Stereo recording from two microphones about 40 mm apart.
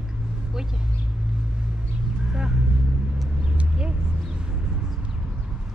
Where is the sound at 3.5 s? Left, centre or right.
Right.